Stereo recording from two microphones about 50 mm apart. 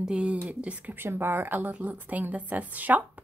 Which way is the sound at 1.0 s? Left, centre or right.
Right.